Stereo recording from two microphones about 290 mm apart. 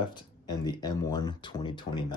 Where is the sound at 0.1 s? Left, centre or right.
Centre.